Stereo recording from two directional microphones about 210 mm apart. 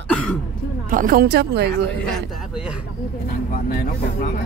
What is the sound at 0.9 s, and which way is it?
Speech, 40° right (ahead or behind).